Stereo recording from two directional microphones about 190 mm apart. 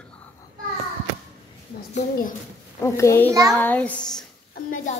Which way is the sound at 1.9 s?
45° left (ahead or behind).